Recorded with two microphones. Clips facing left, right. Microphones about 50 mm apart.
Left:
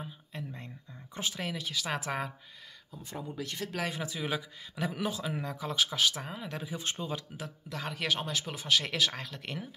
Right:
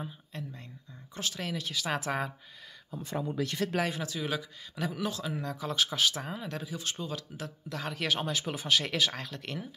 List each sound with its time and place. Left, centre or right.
0.0 s a man's voice: centre
3.0 s speech: right
4.0 s speech: centre
6.6 s speech: left
7.3 s a man's voice: centre